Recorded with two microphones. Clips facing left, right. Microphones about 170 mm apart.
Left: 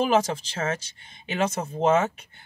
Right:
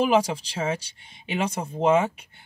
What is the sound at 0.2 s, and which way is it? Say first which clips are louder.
Speech: right 1 dB; 10° right (ahead or behind).